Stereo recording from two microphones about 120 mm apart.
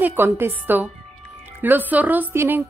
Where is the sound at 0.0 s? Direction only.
15° right (ahead or behind).